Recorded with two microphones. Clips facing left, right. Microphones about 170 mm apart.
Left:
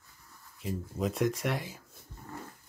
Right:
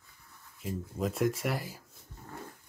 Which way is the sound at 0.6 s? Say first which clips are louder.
Left 1 dB; centre (ahead or behind).